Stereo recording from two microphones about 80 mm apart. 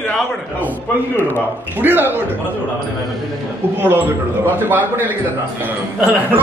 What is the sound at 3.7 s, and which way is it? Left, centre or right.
A man's voice, right.